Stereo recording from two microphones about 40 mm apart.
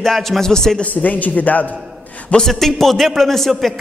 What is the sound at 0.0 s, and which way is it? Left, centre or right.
Speech, centre.